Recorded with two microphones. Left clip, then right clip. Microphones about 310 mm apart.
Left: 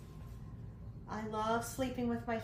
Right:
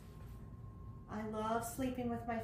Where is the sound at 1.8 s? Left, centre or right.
Centre.